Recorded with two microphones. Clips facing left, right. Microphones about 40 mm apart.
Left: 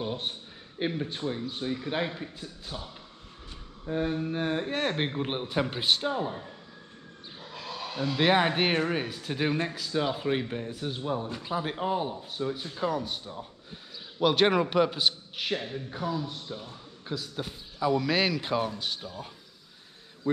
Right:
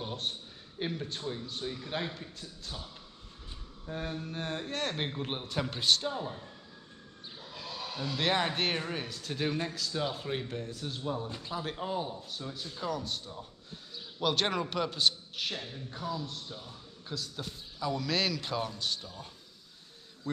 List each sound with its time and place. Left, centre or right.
0.0 s a man's voice: centre
7.5 s speech: centre